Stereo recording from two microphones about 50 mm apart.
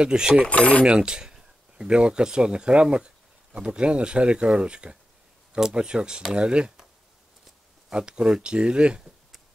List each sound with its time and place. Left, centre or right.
0.0 s speech: centre
0.5 s speech: left
0.8 s speech: centre
7.9 s speech: centre